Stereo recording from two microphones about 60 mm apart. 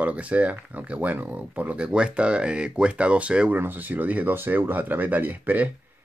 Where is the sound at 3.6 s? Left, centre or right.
Right.